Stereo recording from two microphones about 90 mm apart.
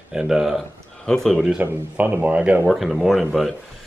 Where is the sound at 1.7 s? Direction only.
20° right (ahead or behind).